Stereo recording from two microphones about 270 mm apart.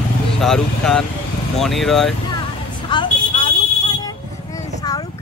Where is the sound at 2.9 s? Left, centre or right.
Centre.